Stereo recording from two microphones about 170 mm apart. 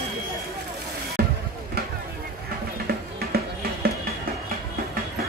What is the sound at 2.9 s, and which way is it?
Music, 65° right (ahead or behind).